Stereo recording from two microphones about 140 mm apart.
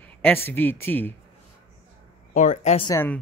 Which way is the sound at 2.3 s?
65° left (ahead or behind).